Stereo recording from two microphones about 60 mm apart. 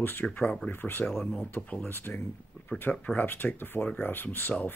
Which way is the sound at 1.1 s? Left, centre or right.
Centre.